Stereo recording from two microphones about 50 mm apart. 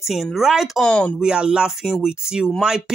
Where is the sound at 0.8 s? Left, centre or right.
Centre.